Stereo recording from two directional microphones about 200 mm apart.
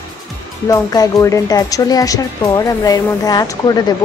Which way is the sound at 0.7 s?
15° left (ahead or behind).